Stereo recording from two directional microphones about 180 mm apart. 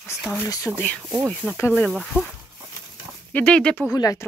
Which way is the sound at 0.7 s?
5° left (ahead or behind).